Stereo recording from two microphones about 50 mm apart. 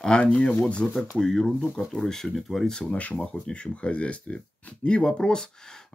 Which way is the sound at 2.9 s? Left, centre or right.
Left.